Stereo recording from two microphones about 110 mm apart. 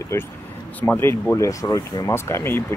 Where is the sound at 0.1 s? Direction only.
25° left (ahead or behind).